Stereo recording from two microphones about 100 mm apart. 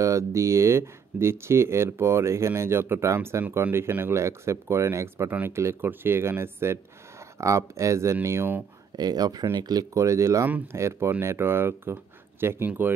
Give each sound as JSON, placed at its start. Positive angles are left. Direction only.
{"t": 0.0, "sound": "speech", "side_deg": -30}
{"t": 8.9, "sound": "speech", "side_deg": -40}